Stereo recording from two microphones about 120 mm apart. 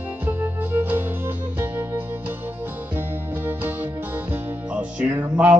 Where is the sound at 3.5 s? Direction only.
15° right (ahead or behind).